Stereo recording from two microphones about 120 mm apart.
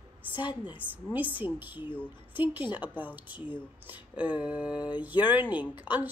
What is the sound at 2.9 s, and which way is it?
Speech, 15° right (ahead or behind).